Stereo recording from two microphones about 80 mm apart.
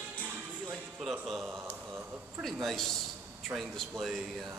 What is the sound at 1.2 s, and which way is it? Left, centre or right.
Speech, centre.